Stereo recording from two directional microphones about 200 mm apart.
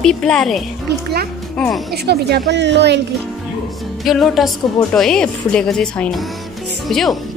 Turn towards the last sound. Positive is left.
turn(degrees=0)  # may be behind; listen again after turning